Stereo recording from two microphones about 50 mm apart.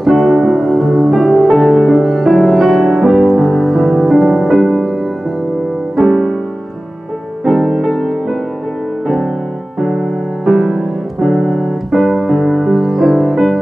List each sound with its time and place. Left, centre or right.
0.0 s music: centre
5.9 s piano: centre
7.4 s music: centre
9.8 s piano: centre